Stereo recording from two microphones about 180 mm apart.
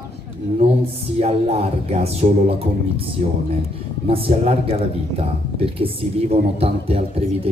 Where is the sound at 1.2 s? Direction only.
35° right (ahead or behind).